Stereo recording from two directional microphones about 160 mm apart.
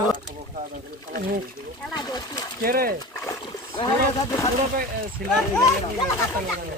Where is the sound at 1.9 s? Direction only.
25° left (ahead or behind).